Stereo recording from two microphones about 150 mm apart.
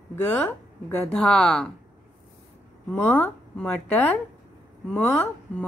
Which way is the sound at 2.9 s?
15° left (ahead or behind).